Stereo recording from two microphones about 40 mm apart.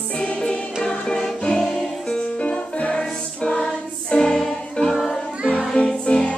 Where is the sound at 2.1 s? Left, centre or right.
Left.